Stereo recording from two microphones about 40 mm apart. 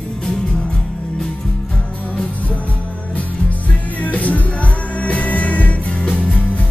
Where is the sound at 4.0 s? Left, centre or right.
Left.